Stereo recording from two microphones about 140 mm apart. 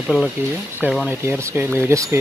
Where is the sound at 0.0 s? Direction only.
Centre (ahead or behind).